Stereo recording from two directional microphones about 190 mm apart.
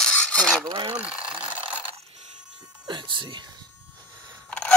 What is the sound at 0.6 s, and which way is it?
Speech, 25° right (ahead or behind).